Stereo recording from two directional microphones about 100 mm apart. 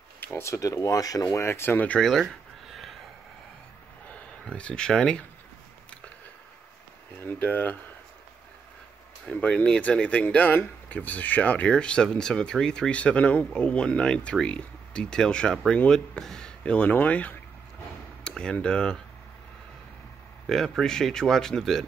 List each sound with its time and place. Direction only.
0.2 s speech: 25° left (ahead or behind)
2.7 s a sound: centre (ahead or behind)
4.1 s speech: 10° left (ahead or behind)
7.2 s speech: 15° left (ahead or behind)
9.2 s speech: 10° left (ahead or behind)
20.4 s speech: centre (ahead or behind)